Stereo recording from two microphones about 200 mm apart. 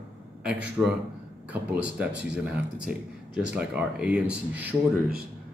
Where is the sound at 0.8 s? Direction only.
5° right (ahead or behind).